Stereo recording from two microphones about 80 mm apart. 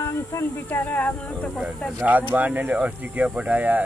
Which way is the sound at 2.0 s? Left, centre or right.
Right.